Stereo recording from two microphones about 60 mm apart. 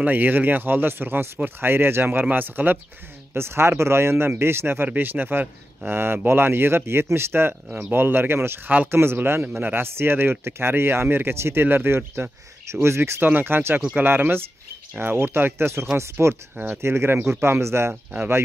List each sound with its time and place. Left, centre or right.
0.0 s speech: right
3.3 s speech: right
4.8 s speech: right
16.5 s speech: right
16.8 s speech: right